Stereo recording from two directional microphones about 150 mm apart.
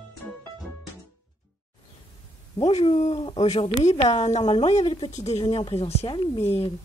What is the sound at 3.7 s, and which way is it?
Speech, 50° left (ahead or behind).